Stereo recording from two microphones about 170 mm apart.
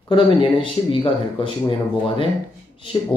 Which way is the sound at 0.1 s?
30° left (ahead or behind).